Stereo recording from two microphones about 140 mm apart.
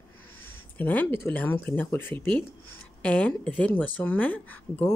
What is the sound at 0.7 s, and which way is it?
Speech, 15° left (ahead or behind).